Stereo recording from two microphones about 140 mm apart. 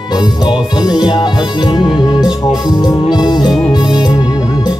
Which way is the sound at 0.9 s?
30° left (ahead or behind).